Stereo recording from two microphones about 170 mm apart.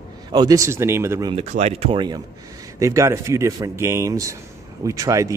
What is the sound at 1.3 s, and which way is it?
Speech, 40° right (ahead or behind).